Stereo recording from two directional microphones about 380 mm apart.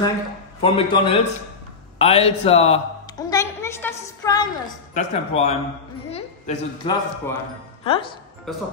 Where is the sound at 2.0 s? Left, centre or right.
Centre.